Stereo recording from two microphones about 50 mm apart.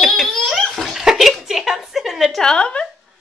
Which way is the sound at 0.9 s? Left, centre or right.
Centre.